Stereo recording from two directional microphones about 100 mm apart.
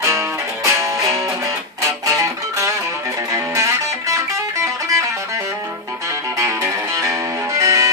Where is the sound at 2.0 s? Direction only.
30° right (ahead or behind).